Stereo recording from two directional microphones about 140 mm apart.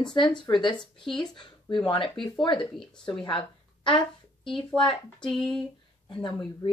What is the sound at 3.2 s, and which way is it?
Speech, 35° left (ahead or behind).